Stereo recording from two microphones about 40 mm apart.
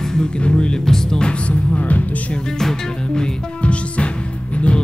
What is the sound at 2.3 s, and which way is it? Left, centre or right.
Music, centre.